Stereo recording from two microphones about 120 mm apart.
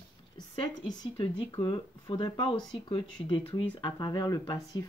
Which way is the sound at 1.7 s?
40° left (ahead or behind).